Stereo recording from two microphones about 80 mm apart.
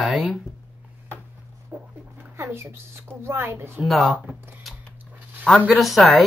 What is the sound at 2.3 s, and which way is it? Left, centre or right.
A woman's voice, right.